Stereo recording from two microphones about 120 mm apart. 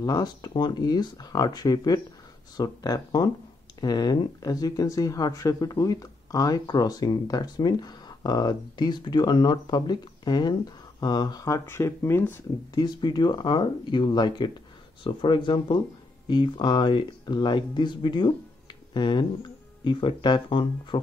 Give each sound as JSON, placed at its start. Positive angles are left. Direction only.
{"t": 0.0, "sound": "speech", "side_deg": 35}
{"t": 12.7, "sound": "speech", "side_deg": 35}